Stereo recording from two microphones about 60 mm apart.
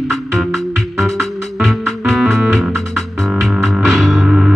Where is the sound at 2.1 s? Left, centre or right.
Centre.